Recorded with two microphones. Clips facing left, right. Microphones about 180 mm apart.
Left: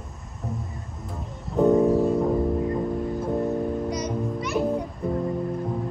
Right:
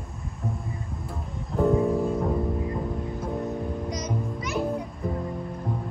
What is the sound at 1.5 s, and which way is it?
Music, centre (ahead or behind).